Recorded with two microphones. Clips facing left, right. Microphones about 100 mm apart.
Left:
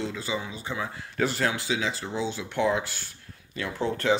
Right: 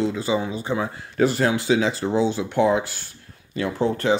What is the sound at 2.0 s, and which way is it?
Speech, 60° right (ahead or behind).